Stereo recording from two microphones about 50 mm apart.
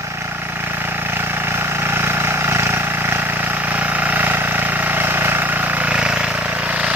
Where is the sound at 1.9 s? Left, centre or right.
Right.